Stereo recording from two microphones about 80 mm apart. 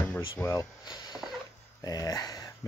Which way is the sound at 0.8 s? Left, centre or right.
Left.